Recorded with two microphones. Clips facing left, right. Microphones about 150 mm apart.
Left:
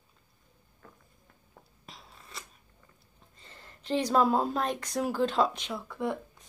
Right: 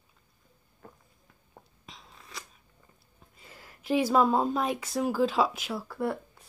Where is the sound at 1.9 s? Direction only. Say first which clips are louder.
Left 1 dB; centre (ahead or behind).